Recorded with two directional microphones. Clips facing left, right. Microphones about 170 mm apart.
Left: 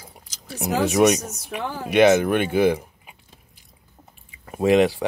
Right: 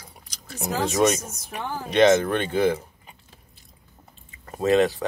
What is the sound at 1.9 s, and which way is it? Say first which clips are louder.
Speech: left 2 dB; 10° left (ahead or behind).